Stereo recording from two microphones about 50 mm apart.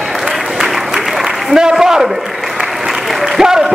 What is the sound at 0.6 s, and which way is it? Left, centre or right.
Applause, centre.